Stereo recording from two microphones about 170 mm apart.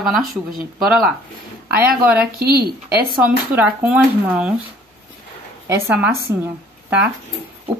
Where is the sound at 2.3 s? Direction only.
65° right (ahead or behind).